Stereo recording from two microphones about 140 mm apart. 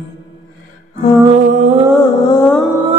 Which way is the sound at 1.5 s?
55° right (ahead or behind).